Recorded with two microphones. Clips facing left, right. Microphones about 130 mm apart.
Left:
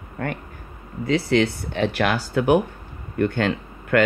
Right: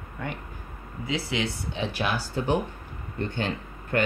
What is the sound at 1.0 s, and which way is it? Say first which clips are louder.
Speech: left 9 dB; 65° left (ahead or behind).